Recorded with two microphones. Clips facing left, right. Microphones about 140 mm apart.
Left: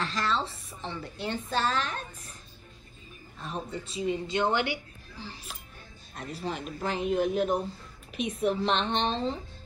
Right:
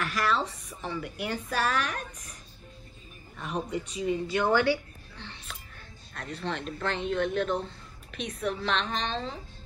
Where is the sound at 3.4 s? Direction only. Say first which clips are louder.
Right 4 dB; 30° left (ahead or behind).